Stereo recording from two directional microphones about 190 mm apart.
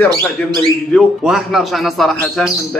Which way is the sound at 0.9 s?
Centre (ahead or behind).